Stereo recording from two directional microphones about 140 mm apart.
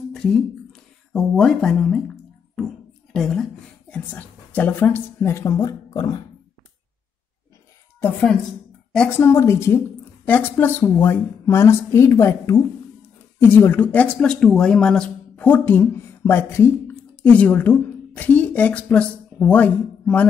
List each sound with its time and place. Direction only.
0.1 s a sound: 5° left (ahead or behind)
3.9 s a woman's voice: 10° left (ahead or behind); by 6.2 s 30° left (ahead or behind)
8.0 s a woman's voice: 10° left (ahead or behind)
9.2 s a woman's voice: 20° left (ahead or behind)